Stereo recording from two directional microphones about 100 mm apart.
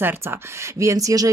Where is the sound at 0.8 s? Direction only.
35° right (ahead or behind).